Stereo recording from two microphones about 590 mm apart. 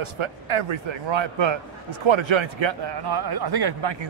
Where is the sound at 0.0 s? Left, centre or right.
Right.